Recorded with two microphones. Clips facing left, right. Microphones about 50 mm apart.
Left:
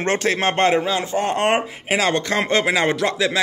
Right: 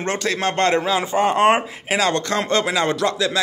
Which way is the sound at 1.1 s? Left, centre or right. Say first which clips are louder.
Right 4 dB; centre.